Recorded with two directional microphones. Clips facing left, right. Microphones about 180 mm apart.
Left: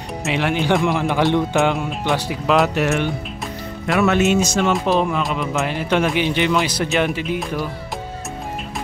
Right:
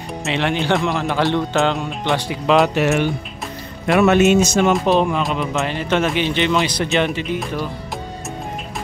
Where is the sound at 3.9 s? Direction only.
20° right (ahead or behind).